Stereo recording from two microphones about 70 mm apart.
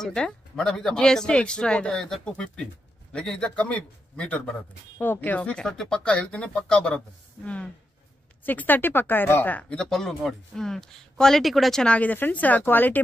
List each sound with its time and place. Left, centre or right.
0.0 s a man's voice: centre
9.8 s speech: centre
11.8 s speech: centre